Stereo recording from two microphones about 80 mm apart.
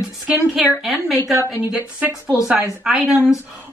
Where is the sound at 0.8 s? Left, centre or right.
Centre.